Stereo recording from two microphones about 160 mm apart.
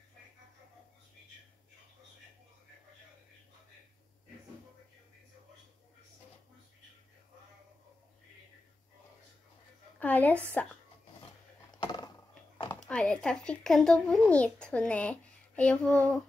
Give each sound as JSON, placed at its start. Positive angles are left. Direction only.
{"t": 9.9, "sound": "a child's voice", "side_deg": 10}
{"t": 11.8, "sound": "a sound", "side_deg": 30}
{"t": 12.8, "sound": "a child's voice", "side_deg": 5}